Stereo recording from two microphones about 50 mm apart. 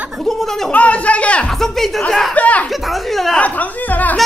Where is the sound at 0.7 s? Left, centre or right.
Left.